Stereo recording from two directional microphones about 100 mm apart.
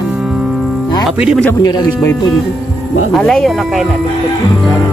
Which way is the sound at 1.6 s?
40° left (ahead or behind).